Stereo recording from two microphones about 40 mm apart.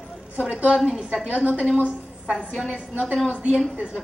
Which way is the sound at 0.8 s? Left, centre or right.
Right.